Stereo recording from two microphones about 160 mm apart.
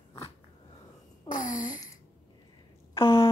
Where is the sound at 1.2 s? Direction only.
55° left (ahead or behind).